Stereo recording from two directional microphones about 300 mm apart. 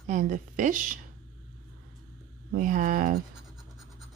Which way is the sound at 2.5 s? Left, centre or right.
Right.